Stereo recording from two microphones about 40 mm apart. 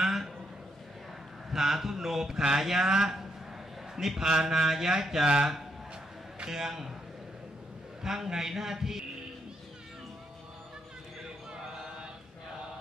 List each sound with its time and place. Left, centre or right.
0.0 s a sound: centre
1.5 s a man's voice: centre
6.5 s a man's voice: centre
8.0 s a man's voice: centre